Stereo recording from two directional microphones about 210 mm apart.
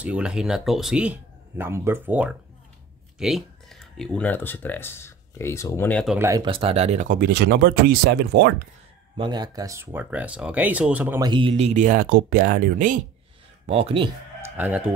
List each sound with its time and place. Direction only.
0.0 s speech: 5° right (ahead or behind)
6.1 s speech: 15° right (ahead or behind); by 8.6 s 50° right (ahead or behind)
9.1 s speech: 20° right (ahead or behind)
11.2 s speech: 25° right (ahead or behind); by 13.0 s 40° right (ahead or behind)
13.7 s speech: 30° right (ahead or behind)
14.6 s speech: 5° right (ahead or behind)